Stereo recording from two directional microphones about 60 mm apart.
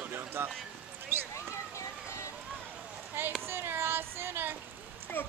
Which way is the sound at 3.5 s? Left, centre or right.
Right.